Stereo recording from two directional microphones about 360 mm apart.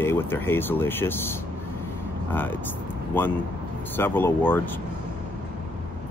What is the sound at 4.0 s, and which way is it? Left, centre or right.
Speech, centre.